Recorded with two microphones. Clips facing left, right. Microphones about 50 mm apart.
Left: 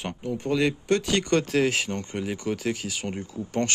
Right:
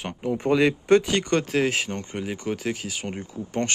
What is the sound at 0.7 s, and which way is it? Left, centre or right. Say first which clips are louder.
Speech: right 5 dB; centre.